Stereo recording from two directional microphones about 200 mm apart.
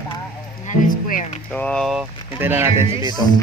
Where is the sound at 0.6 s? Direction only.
40° left (ahead or behind).